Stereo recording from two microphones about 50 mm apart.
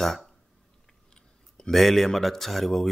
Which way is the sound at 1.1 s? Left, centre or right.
Centre.